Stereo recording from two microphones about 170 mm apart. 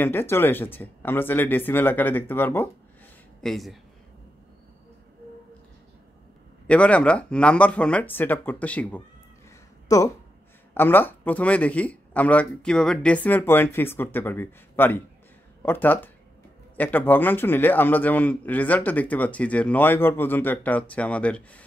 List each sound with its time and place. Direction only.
0.0 s a man's voice: 15° left (ahead or behind)
3.3 s speech: centre (ahead or behind)
6.7 s a man's voice: 10° left (ahead or behind)
9.8 s a man's voice: 20° left (ahead or behind)